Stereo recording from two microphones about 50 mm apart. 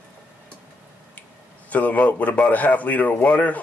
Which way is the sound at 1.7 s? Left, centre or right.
Left.